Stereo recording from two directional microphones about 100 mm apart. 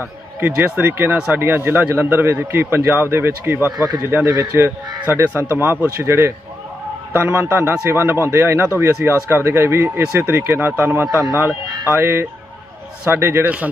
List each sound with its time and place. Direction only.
0.4 s a man's voice: 20° right (ahead or behind)